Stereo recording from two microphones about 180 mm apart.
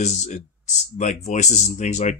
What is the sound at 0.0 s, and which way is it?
A man's voice, 40° left (ahead or behind).